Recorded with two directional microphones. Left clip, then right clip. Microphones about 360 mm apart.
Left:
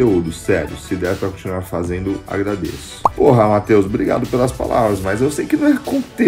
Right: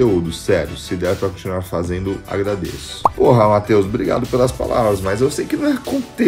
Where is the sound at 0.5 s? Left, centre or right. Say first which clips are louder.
Right 2 dB; centre.